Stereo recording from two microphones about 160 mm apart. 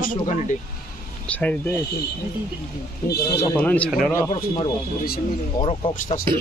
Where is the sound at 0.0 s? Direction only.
50° left (ahead or behind).